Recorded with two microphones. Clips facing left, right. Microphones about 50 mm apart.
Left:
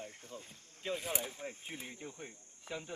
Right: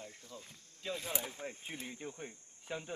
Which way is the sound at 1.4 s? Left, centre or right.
Right.